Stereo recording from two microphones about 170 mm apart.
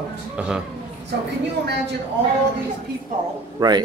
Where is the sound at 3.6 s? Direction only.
25° right (ahead or behind).